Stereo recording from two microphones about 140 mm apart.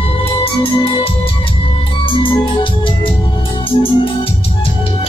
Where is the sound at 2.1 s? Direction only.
35° left (ahead or behind).